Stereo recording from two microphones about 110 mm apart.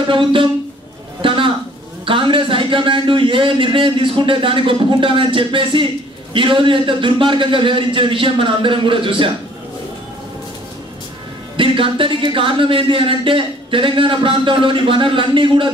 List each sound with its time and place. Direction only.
0.1 s speech: 50° right (ahead or behind)
1.2 s a sound: 50° right (ahead or behind)
2.0 s speech: 50° right (ahead or behind)
11.5 s speech: 50° right (ahead or behind)